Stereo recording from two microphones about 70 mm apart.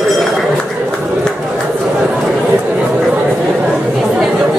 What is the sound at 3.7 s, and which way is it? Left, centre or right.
Chatter, centre.